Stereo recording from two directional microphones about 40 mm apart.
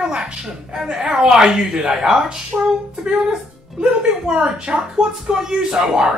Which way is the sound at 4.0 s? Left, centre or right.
Right.